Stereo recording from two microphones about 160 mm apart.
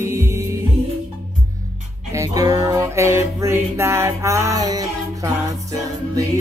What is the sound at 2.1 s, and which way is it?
Music, 20° right (ahead or behind).